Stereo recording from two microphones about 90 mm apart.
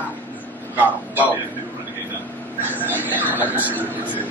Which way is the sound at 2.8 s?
20° right (ahead or behind).